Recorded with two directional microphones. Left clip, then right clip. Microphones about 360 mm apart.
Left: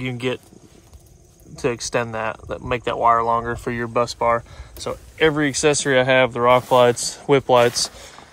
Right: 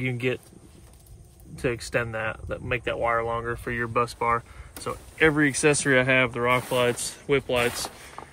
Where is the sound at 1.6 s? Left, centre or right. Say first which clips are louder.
Left 5 dB; centre.